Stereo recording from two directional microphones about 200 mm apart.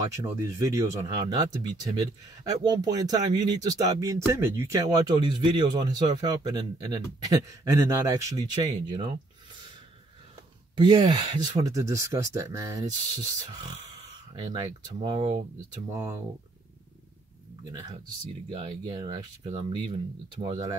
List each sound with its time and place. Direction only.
0.0 s speech: 15° right (ahead or behind)
10.8 s speech: 20° right (ahead or behind)
15.0 s speech: 20° right (ahead or behind)
18.5 s speech: 25° right (ahead or behind)